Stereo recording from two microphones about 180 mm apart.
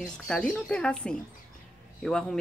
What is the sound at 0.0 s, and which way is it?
Speech, 5° left (ahead or behind).